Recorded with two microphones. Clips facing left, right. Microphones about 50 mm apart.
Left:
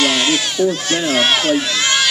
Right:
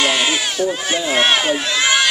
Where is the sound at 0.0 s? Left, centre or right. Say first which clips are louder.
Left 1 dB; centre.